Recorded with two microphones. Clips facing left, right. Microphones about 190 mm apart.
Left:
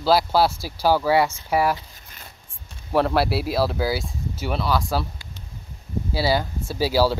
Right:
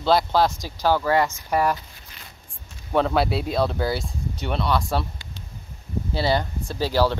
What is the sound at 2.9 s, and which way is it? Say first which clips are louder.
Speech: left 1 dB; 5° left (ahead or behind).